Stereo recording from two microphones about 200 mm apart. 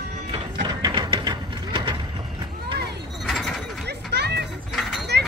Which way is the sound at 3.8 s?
55° right (ahead or behind).